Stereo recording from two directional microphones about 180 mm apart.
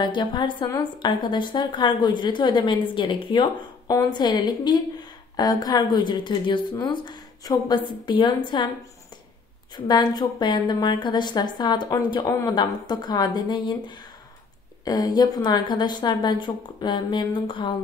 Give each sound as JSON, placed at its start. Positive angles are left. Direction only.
{"t": 0.0, "sound": "a woman's voice", "side_deg": 25}
{"t": 9.8, "sound": "a woman's voice", "side_deg": 25}